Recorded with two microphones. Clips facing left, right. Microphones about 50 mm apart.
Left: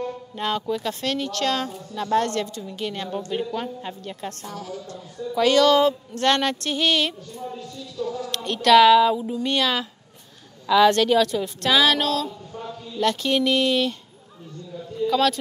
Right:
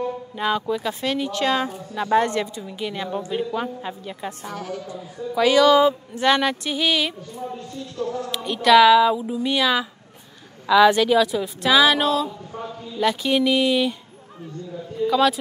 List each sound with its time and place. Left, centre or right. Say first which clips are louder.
0.0 s speech: right 3 dB; centre
4.5 s a woman's voice: right 3 dB; right
4.8 s speech: right 2 dB; centre
7.5 s music: right 2 dB; right
8.0 s a woman's voice: right 1 dB; right
8.3 s speech: right 1 dB; centre
15.0 s a sound: right 2 dB; centre